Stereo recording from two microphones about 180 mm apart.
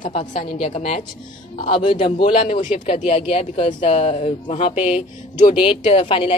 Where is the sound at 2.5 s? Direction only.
45° left (ahead or behind).